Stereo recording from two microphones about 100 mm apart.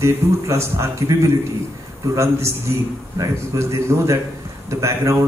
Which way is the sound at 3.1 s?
25° right (ahead or behind).